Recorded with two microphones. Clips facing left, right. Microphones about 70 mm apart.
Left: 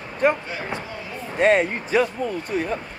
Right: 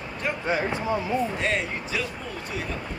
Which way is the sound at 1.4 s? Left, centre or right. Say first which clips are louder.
Left 9 dB; left.